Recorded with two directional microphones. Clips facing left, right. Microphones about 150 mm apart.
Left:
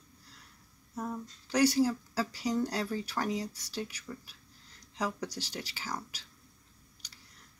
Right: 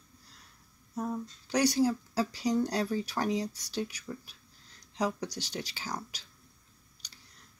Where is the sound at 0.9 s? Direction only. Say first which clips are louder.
Right 3 dB; 15° right (ahead or behind).